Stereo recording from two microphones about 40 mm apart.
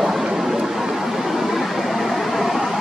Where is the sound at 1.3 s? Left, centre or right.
Centre.